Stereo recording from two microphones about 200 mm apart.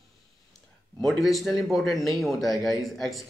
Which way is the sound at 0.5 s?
Centre (ahead or behind).